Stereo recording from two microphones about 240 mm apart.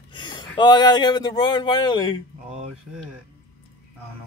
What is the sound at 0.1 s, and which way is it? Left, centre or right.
Speech, centre.